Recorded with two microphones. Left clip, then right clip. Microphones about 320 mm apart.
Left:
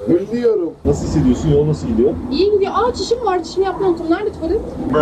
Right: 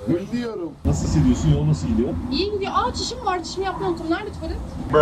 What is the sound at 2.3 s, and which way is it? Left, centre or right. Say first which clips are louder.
Speech: left 9 dB; left.